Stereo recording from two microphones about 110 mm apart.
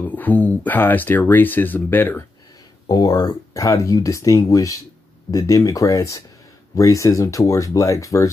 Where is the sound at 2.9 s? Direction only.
35° left (ahead or behind).